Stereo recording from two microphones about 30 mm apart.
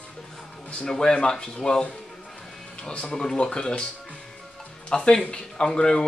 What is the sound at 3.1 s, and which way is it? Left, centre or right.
Speech, left.